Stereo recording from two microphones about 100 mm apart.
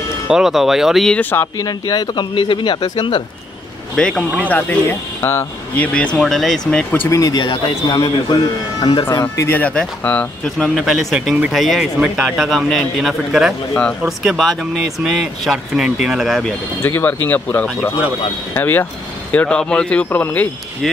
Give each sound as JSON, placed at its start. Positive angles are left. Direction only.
{"t": 0.3, "sound": "speech", "side_deg": -5}
{"t": 1.6, "sound": "speech", "side_deg": 40}
{"t": 3.9, "sound": "speech", "side_deg": 5}
{"t": 4.4, "sound": "speech", "side_deg": 15}
{"t": 5.9, "sound": "speech", "side_deg": 10}
{"t": 6.9, "sound": "speech", "side_deg": 20}
{"t": 7.2, "sound": "speech", "side_deg": 35}
{"t": 7.4, "sound": "speech", "side_deg": 50}
{"t": 9.2, "sound": "speech", "side_deg": 20}
{"t": 12.4, "sound": "speech", "side_deg": 0}
{"t": 16.8, "sound": "speech", "side_deg": 20}